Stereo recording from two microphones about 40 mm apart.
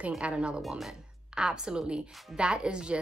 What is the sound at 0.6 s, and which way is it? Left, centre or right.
Speech, centre.